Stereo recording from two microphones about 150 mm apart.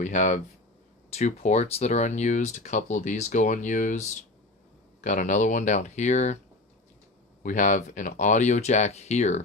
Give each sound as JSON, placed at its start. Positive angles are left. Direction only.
{"t": 0.0, "sound": "speech", "side_deg": 55}
{"t": 5.0, "sound": "speech", "side_deg": 60}
{"t": 7.4, "sound": "speech", "side_deg": 60}